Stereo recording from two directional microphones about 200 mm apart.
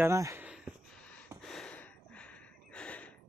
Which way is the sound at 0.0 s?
15° right (ahead or behind).